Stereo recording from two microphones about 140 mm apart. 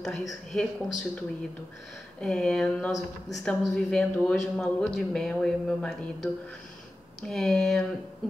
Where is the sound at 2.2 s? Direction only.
5° left (ahead or behind).